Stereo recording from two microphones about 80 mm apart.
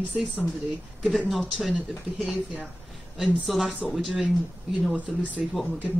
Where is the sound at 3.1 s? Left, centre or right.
Centre.